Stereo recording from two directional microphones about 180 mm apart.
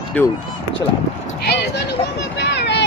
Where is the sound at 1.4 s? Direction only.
65° left (ahead or behind).